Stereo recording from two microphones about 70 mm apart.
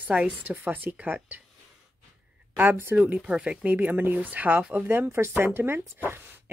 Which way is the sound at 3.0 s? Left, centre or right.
Centre.